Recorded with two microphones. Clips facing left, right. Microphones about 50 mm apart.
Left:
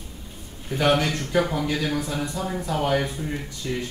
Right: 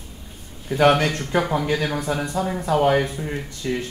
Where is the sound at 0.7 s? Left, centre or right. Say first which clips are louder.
Right 4 dB; right.